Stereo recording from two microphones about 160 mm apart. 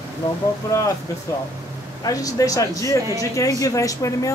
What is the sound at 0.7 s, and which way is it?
Speech, 20° left (ahead or behind).